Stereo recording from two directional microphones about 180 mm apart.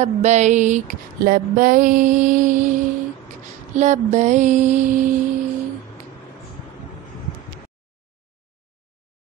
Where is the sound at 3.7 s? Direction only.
40° right (ahead or behind).